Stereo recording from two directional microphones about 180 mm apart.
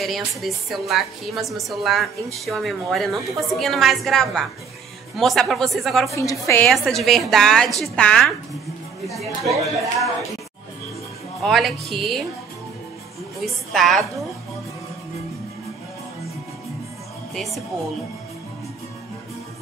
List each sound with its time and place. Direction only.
0.0 s a woman's voice: centre (ahead or behind)
6.1 s a woman's voice: 15° left (ahead or behind)
6.7 s a woman's voice: centre (ahead or behind)
11.4 s a woman's voice: centre (ahead or behind)
13.4 s a woman's voice: centre (ahead or behind)
17.3 s music: centre (ahead or behind)